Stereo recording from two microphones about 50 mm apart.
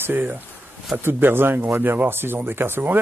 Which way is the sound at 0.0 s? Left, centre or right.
Right.